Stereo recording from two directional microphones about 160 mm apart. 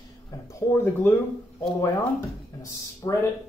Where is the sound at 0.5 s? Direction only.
15° left (ahead or behind).